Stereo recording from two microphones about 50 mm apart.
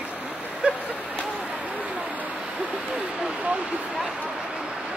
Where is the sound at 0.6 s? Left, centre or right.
Centre.